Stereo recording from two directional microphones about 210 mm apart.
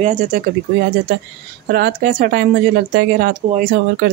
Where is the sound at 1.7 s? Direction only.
45° right (ahead or behind).